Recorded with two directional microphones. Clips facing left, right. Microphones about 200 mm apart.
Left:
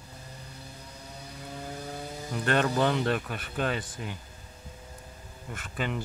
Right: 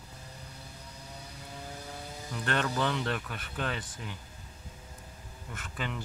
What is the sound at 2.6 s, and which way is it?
Speech, 40° left (ahead or behind).